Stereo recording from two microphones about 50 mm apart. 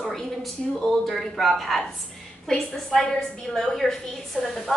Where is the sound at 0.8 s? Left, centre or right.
Centre.